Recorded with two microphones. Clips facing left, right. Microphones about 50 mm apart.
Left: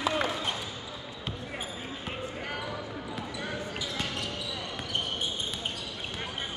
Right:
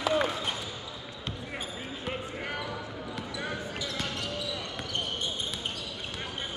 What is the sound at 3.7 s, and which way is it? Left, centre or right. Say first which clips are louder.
Basketball bounce: even; centre.